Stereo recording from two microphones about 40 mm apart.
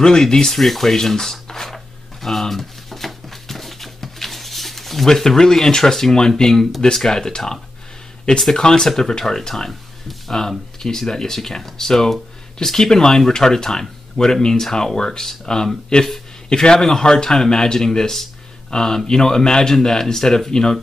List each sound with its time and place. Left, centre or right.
0.0 s speech: centre
2.2 s a sound: centre
8.5 s speech: centre
9.7 s music: centre
10.8 s speech: centre